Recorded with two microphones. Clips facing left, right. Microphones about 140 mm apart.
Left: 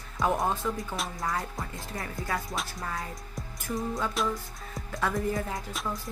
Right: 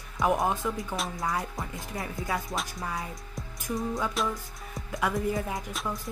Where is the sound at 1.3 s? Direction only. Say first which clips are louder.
Right 1 dB; 20° right (ahead or behind).